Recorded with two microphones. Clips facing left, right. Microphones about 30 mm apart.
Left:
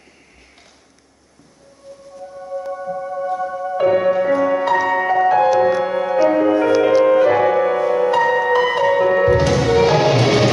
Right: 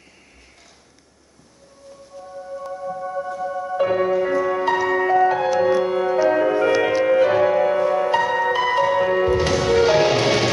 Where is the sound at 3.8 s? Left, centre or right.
Centre.